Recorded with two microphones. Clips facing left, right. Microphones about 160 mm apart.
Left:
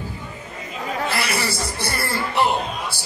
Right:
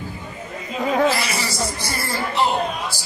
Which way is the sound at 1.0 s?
60° left (ahead or behind).